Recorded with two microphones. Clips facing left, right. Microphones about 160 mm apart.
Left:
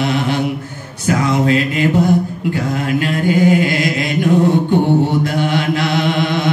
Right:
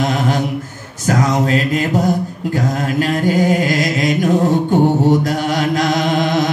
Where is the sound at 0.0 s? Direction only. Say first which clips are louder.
Even; 40° right (ahead or behind).